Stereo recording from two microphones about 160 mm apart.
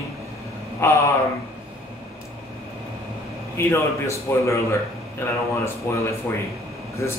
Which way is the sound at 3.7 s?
20° left (ahead or behind).